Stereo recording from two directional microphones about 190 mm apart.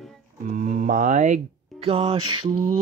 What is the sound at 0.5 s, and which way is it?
Speech, 45° right (ahead or behind).